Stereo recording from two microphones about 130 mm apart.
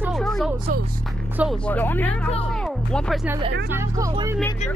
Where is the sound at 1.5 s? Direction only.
10° left (ahead or behind).